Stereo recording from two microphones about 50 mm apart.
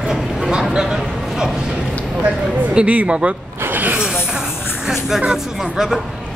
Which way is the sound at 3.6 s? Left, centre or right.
Right.